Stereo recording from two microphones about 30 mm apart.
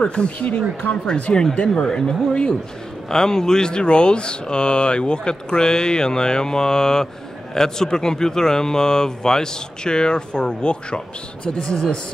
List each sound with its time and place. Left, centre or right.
0.0 s speech: left
1.3 s speech: left
3.1 s speech: centre